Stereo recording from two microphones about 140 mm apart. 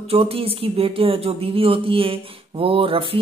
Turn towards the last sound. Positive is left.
turn(degrees=-40)  # may be behind; listen again after turning